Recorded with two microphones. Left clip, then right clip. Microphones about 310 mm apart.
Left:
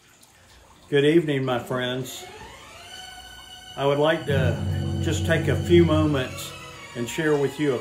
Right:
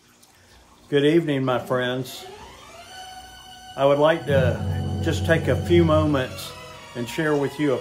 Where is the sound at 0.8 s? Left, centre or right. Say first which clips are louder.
Even; centre.